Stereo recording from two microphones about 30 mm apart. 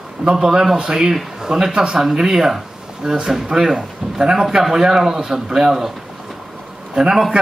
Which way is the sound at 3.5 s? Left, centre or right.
Centre.